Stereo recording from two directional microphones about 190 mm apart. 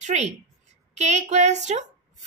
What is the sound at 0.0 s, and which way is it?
A woman's voice, 40° right (ahead or behind).